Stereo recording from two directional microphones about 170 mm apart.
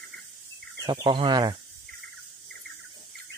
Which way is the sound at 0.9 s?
25° right (ahead or behind).